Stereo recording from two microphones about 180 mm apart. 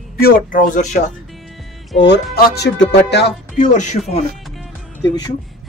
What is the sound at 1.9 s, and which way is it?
Speech, 75° left (ahead or behind).